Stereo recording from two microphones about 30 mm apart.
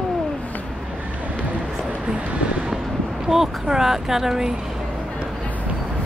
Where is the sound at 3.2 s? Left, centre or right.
Centre.